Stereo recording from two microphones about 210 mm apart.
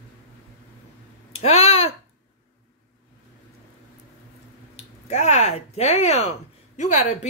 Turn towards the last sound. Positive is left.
turn(degrees=35)  # may be behind; listen again after turning